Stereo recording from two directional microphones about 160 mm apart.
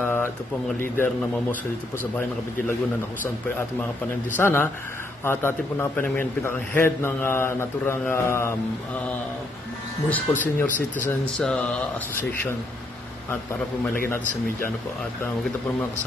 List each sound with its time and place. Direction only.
0.0 s a sound: 15° left (ahead or behind)
0.7 s a man's voice: 15° left (ahead or behind)
4.4 s a man's voice: 15° left (ahead or behind)
10.0 s a man's voice: 10° left (ahead or behind)